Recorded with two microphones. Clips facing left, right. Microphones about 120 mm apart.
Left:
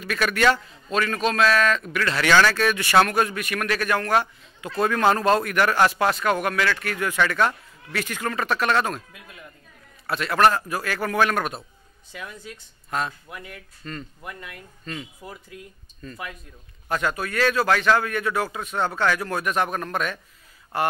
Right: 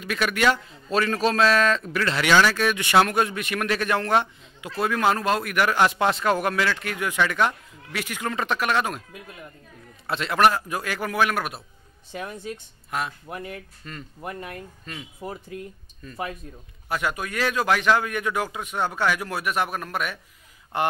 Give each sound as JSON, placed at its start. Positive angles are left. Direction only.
{"t": 0.0, "sound": "speech", "side_deg": -15}
{"t": 0.9, "sound": "a man's voice", "side_deg": -30}
{"t": 4.6, "sound": "speech", "side_deg": -10}
{"t": 10.0, "sound": "speech", "side_deg": -20}
{"t": 12.1, "sound": "speech", "side_deg": -35}
{"t": 13.8, "sound": "speech", "side_deg": -5}
{"t": 14.2, "sound": "speech", "side_deg": -35}
{"t": 16.9, "sound": "speech", "side_deg": -15}
{"t": 20.7, "sound": "a man's voice", "side_deg": -20}